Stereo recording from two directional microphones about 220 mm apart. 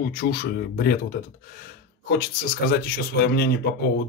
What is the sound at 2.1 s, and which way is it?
Speech, 45° left (ahead or behind).